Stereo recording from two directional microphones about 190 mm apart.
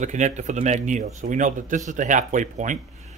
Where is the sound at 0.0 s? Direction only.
40° right (ahead or behind).